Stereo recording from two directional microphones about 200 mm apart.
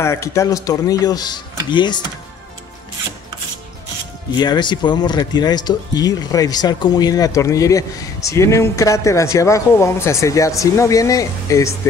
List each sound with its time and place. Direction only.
0.0 s speech: 15° left (ahead or behind)
4.4 s speech: 20° left (ahead or behind)